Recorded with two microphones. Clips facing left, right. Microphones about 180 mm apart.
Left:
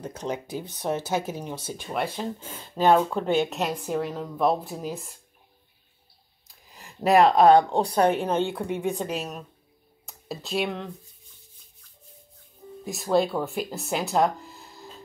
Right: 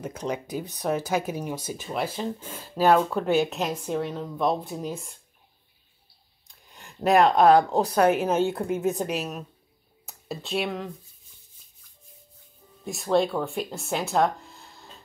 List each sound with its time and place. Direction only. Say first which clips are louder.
0.2 s speech: even; 25° left (ahead or behind)
1.2 s speech: right 2 dB; 10° right (ahead or behind)
6.4 s speech: left 1 dB; 5° left (ahead or behind)
12.8 s speech: even; centre (ahead or behind)